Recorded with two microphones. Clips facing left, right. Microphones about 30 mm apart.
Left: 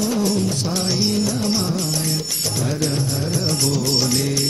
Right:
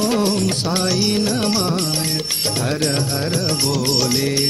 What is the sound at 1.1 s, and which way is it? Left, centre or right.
Music, right.